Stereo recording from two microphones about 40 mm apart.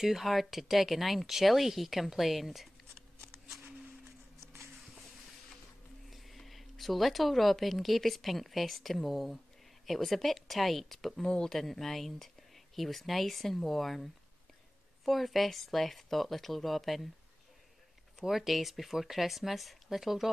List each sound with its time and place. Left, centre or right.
0.0 s speech: centre
4.6 s a sound: centre
6.0 s speech: centre
11.2 s speech: left
11.5 s speech: centre
18.2 s speech: centre